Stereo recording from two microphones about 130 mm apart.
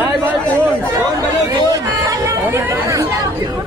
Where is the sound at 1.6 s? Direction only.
25° right (ahead or behind).